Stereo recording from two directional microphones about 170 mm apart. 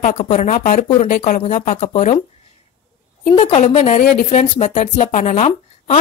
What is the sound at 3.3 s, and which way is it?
A woman's voice, 30° left (ahead or behind).